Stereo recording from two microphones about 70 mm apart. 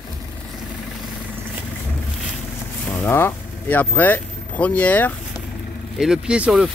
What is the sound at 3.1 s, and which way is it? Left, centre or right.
Speech, left.